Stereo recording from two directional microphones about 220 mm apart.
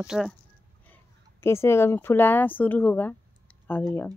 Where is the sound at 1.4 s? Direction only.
10° left (ahead or behind).